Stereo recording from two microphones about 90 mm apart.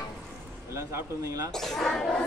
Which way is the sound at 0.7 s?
35° right (ahead or behind).